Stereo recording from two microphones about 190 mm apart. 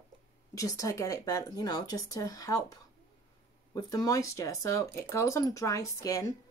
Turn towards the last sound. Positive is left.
turn(degrees=15)  # may be behind; listen again after turning